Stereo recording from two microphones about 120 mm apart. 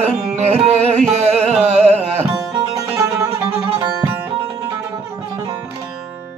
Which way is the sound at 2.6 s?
30° right (ahead or behind).